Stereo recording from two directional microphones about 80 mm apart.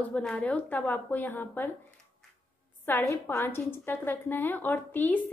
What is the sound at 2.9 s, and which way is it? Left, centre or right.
A woman's voice, left.